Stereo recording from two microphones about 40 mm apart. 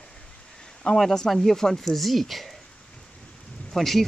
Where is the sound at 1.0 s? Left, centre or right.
Centre.